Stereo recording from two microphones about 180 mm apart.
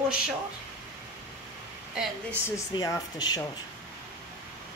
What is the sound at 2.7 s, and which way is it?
Speech, 20° left (ahead or behind).